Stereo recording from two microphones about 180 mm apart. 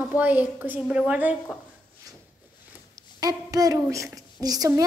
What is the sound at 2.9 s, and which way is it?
A woman's voice, 20° right (ahead or behind).